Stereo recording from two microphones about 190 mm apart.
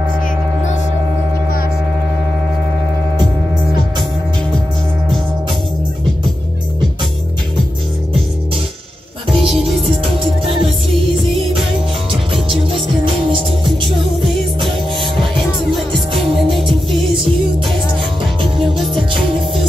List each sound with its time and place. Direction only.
9.3 s music: centre (ahead or behind)
10.6 s music: 30° right (ahead or behind)
11.1 s music: centre (ahead or behind)
13.7 s music: centre (ahead or behind)
16.1 s music: centre (ahead or behind)